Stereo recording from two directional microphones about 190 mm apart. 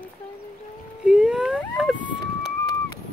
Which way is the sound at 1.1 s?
5° right (ahead or behind).